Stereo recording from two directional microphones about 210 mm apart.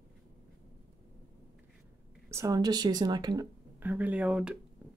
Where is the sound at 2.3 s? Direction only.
15° right (ahead or behind).